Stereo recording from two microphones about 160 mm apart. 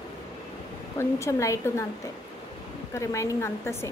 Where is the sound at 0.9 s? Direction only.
20° left (ahead or behind).